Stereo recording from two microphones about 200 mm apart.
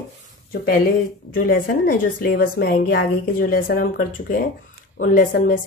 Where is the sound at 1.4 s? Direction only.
45° left (ahead or behind).